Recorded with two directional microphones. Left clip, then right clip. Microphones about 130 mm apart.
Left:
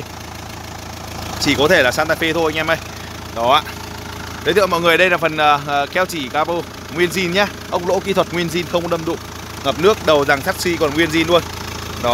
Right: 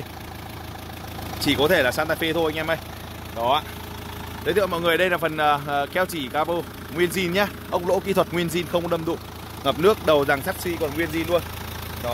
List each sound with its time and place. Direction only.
1.4 s speech: 5° left (ahead or behind)
3.3 s speech: 25° left (ahead or behind); by 10.4 s 5° right (ahead or behind)
10.8 s speech: 45° left (ahead or behind)